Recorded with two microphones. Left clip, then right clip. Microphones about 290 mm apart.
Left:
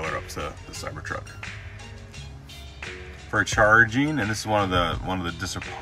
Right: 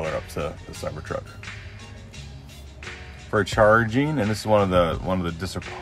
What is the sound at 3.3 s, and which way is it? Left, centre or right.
Speech, centre.